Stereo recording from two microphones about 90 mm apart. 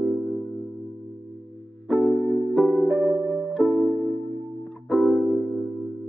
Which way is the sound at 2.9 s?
15° right (ahead or behind).